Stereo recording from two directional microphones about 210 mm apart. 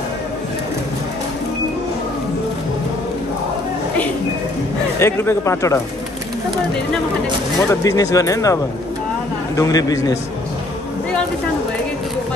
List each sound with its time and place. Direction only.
4.9 s speech: 10° left (ahead or behind)
7.8 s speech: 15° left (ahead or behind)
9.6 s speech: 20° left (ahead or behind)